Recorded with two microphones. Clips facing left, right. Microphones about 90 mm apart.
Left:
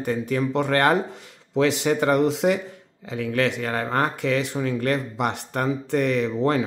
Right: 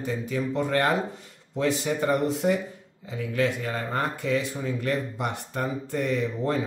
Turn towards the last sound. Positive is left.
turn(degrees=80)